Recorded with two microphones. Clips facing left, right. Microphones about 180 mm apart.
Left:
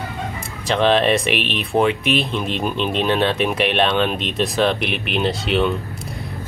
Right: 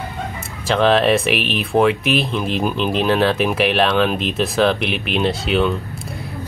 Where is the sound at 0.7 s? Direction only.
Centre (ahead or behind).